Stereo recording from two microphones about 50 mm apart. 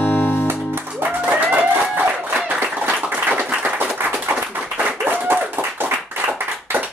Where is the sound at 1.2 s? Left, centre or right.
Right.